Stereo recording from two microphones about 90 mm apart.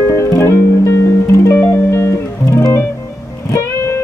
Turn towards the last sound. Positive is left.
turn(degrees=30)  # may be behind; listen again after turning